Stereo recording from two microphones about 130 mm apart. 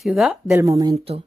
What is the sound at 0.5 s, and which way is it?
Speech, 25° right (ahead or behind).